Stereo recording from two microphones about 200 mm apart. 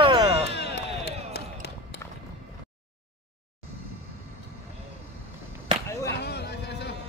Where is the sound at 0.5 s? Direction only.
55° left (ahead or behind).